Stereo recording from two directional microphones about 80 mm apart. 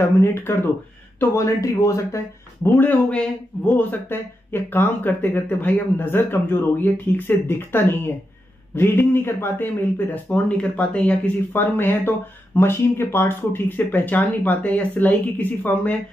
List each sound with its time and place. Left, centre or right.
0.0 s speech: left
2.7 s a man's voice: centre
11.5 s a man's voice: left